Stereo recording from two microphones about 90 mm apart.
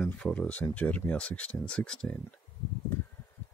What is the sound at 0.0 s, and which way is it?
Speech, 15° left (ahead or behind).